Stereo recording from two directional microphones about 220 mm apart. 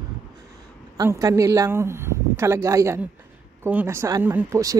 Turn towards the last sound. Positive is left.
turn(degrees=-15)  # may be behind; listen again after turning